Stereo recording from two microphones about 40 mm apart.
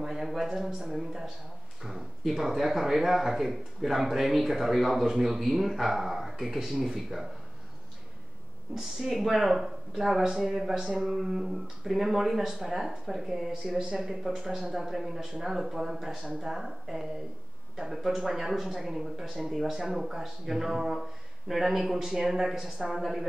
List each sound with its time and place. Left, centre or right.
0.0 s speech: centre
8.7 s speech: centre
13.7 s speech: right
13.9 s speech: centre
19.5 s speech: centre